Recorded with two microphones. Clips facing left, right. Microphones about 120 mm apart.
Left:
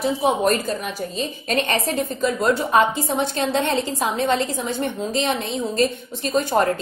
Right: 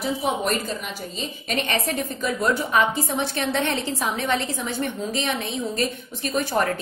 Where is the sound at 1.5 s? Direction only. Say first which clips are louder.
Left 3 dB; 35° left (ahead or behind).